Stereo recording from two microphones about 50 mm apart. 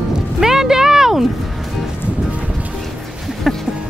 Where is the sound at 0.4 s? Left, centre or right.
Centre.